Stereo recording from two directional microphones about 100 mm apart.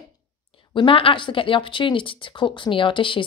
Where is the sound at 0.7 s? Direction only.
55° left (ahead or behind).